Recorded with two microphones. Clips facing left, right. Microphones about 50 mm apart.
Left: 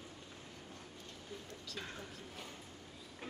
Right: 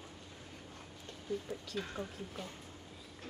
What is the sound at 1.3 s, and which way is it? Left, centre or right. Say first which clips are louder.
Speech: right 12 dB; centre.